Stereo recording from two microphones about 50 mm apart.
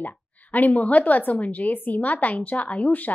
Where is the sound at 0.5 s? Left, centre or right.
Left.